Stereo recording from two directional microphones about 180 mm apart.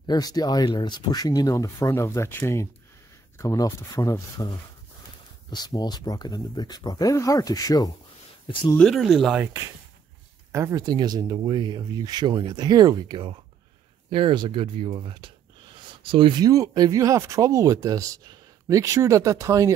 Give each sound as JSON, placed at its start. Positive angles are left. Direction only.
{"t": 0.0, "sound": "speech", "side_deg": 20}
{"t": 8.7, "sound": "speech", "side_deg": 0}
{"t": 10.5, "sound": "speech", "side_deg": -20}